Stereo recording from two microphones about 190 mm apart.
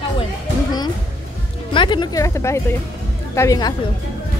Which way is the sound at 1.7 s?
25° left (ahead or behind).